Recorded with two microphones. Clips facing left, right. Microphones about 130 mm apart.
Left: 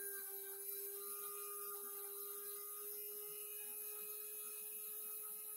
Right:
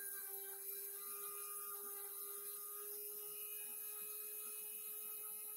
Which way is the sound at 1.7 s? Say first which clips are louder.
Left 3 dB; centre (ahead or behind).